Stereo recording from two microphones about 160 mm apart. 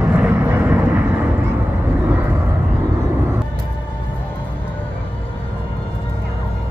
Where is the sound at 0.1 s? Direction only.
10° right (ahead or behind).